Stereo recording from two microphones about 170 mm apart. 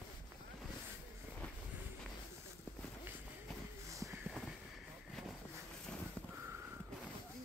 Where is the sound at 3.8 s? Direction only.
20° right (ahead or behind).